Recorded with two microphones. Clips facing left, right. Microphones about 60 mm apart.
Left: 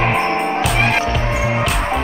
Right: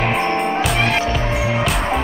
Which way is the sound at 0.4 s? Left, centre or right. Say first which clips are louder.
Left 1 dB; centre.